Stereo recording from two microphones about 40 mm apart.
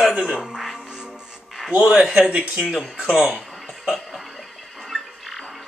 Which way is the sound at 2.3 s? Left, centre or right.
Right.